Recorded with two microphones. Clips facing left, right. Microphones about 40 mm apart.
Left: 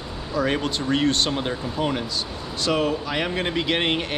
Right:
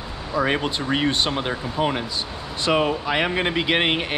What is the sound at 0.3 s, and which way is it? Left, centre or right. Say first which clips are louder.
A man's voice: right 1 dB; centre.